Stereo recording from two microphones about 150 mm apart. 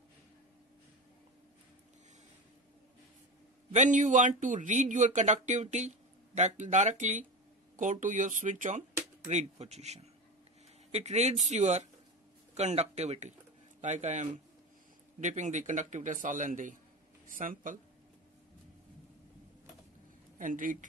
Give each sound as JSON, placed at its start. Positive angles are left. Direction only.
{"t": 3.7, "sound": "a man's voice", "side_deg": -55}
{"t": 20.3, "sound": "speech", "side_deg": -60}